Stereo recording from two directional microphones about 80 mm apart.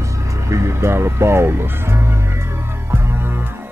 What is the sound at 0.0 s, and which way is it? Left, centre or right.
Music, right.